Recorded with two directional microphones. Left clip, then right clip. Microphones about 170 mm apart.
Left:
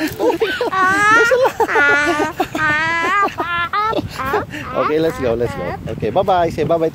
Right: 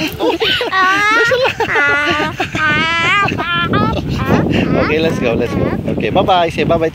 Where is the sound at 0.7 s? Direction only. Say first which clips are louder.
Even; 20° left (ahead or behind).